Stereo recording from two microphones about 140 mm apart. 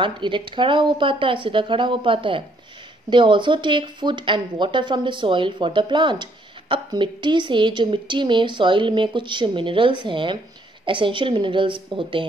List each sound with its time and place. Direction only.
0.0 s a woman's voice: 35° right (ahead or behind)